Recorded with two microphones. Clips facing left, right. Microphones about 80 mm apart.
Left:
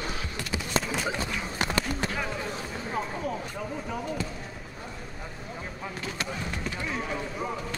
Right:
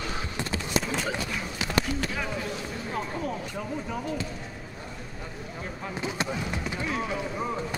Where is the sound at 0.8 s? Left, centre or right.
Centre.